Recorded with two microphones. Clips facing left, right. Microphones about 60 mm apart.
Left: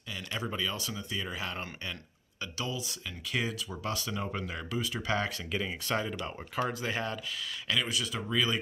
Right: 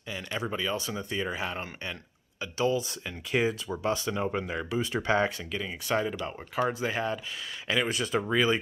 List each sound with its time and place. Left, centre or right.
0.1 s speech: centre
2.7 s speech: right
3.3 s speech: right
5.5 s speech: centre
7.8 s speech: right